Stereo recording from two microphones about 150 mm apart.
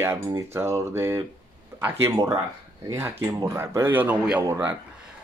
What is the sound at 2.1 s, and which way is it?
Speech, 25° right (ahead or behind).